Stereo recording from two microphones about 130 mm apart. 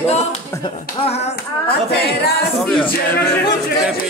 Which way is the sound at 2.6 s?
10° left (ahead or behind).